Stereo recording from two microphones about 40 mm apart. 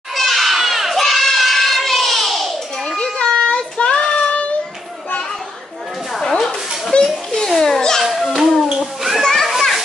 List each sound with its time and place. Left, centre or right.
0.1 s crowd: centre
3.0 s child singing: left
6.1 s a sound: centre
6.9 s children playing: centre
7.4 s a sound: centre
8.0 s children playing: centre